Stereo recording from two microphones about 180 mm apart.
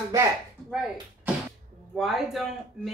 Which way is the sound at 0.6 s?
Centre (ahead or behind).